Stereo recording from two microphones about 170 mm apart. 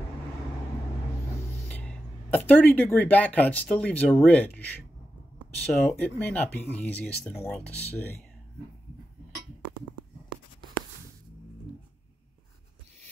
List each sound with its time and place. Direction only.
1.7 s speech: 10° left (ahead or behind)
9.8 s writing: 25° right (ahead or behind)